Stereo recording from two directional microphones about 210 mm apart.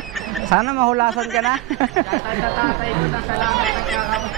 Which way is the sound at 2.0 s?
35° right (ahead or behind).